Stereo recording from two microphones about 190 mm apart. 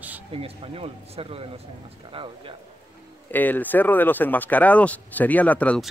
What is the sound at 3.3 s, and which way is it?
Speech, 10° left (ahead or behind).